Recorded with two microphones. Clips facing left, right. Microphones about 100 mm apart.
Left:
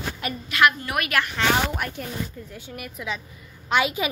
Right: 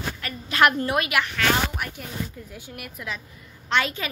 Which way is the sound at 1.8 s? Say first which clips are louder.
Left 2 dB; 5° right (ahead or behind).